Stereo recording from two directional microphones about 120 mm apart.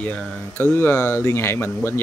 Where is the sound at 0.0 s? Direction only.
10° left (ahead or behind).